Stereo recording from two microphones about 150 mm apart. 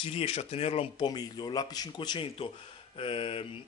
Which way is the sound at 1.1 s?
25° left (ahead or behind).